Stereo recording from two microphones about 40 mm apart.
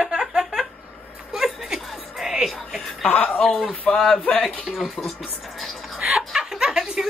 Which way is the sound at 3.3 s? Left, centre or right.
Centre.